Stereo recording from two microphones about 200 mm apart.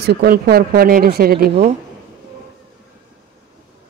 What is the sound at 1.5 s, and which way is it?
Speech, 35° right (ahead or behind).